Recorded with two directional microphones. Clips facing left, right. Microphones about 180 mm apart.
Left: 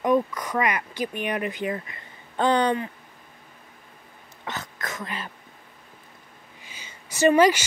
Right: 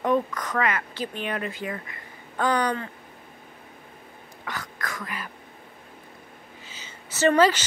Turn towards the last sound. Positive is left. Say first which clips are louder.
# left 2 dB
turn(degrees=10)  # may be behind; listen again after turning